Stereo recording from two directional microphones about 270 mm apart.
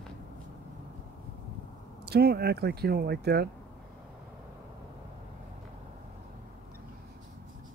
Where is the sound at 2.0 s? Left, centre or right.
Right.